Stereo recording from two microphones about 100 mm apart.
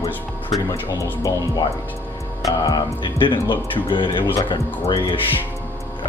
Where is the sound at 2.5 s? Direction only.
45° left (ahead or behind).